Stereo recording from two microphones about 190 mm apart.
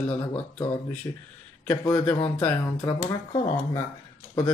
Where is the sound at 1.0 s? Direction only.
20° left (ahead or behind).